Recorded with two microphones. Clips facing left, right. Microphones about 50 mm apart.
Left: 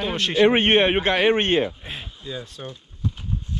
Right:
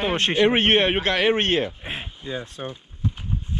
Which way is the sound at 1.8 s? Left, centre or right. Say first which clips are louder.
Right 3 dB; right.